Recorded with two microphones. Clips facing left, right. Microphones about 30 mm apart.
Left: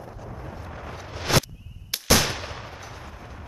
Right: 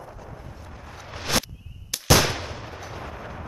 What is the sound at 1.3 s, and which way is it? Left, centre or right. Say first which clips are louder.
Whip: left 3 dB; centre.